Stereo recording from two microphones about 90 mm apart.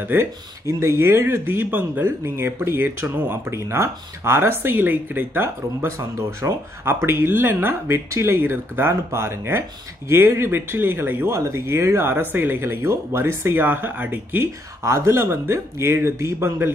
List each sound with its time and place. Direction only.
0.1 s speech: 30° right (ahead or behind)